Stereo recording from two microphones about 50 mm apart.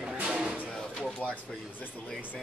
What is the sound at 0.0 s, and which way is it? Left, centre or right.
Music, centre.